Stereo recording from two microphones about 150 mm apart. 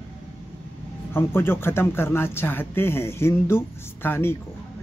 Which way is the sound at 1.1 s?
15° left (ahead or behind).